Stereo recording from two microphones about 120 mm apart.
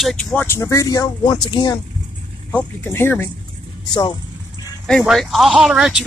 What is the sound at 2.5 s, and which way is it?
Speech, 20° left (ahead or behind).